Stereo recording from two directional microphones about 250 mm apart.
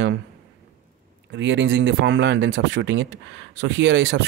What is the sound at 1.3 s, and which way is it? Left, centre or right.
Speech, right.